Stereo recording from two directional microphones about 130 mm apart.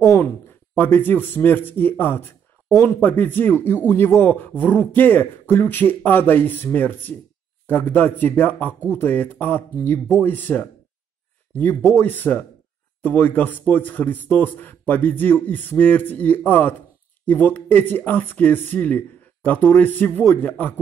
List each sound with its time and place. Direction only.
0.0 s a man's voice: 20° left (ahead or behind)